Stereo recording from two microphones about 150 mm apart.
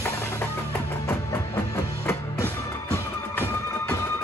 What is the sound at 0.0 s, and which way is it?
Music, 15° left (ahead or behind).